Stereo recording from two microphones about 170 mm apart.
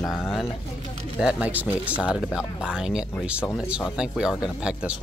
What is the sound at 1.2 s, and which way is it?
Speech, 10° right (ahead or behind).